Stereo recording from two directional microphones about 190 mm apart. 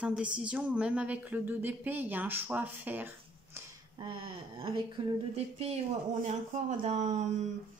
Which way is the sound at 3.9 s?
25° right (ahead or behind).